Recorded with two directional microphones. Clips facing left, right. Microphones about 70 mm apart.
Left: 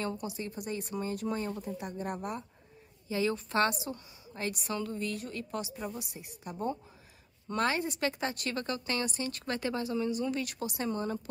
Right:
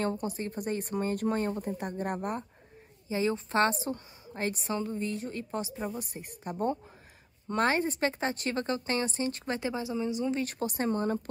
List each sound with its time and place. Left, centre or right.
0.0 s speech: right
3.1 s speech: right
5.9 s speech: right
10.4 s speech: right